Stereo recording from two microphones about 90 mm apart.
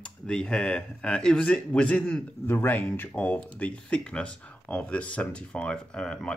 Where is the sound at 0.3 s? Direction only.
10° left (ahead or behind).